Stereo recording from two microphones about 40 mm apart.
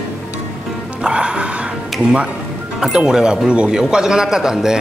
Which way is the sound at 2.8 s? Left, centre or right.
Centre.